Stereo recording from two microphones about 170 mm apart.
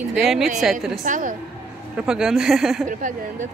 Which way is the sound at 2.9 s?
50° right (ahead or behind).